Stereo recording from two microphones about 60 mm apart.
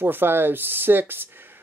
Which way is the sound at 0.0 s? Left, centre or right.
Right.